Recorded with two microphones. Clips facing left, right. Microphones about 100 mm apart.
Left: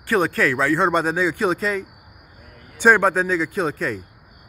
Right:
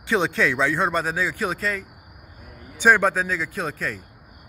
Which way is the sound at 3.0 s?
10° left (ahead or behind).